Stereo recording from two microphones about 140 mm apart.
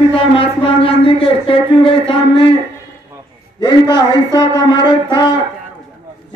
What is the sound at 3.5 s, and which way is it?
A man's voice, 35° left (ahead or behind).